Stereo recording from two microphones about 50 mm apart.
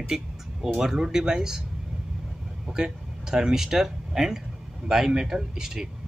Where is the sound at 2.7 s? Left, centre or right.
Centre.